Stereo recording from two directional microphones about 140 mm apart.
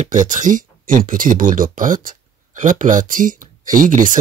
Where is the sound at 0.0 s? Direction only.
65° right (ahead or behind).